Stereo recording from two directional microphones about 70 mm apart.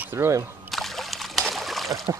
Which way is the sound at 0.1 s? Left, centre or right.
Right.